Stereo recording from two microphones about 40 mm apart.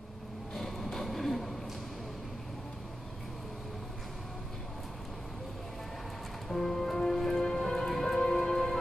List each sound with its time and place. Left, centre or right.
0.6 s vehicle: centre
6.5 s music: centre